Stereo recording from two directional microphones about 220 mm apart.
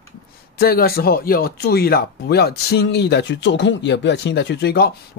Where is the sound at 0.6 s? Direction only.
45° left (ahead or behind).